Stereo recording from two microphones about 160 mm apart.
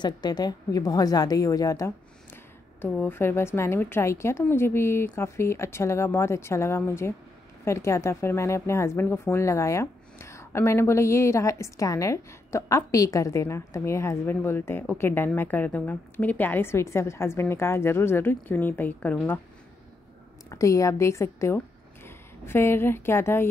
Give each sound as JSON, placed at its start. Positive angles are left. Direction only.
{"t": 0.0, "sound": "a woman's voice", "side_deg": 25}
{"t": 20.4, "sound": "speech", "side_deg": 20}